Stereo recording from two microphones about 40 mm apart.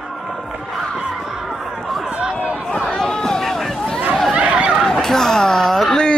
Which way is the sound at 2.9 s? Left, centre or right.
Centre.